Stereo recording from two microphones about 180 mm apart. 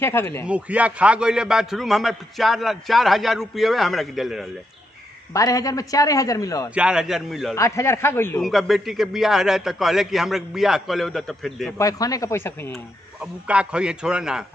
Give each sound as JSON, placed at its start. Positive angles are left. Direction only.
{"t": 0.0, "sound": "speech", "side_deg": 10}
{"t": 0.5, "sound": "a man's voice", "side_deg": -5}
{"t": 5.3, "sound": "a man's voice", "side_deg": 20}
{"t": 6.7, "sound": "a man's voice", "side_deg": -5}
{"t": 7.5, "sound": "speech", "side_deg": 15}
{"t": 8.4, "sound": "a man's voice", "side_deg": 0}
{"t": 11.8, "sound": "speech", "side_deg": 20}
{"t": 12.7, "sound": "a man's voice", "side_deg": -5}